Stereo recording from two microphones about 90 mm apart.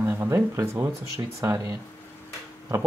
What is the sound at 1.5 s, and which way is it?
Speech, 45° right (ahead or behind).